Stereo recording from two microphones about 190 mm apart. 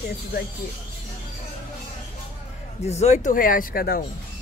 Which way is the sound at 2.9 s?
35° left (ahead or behind).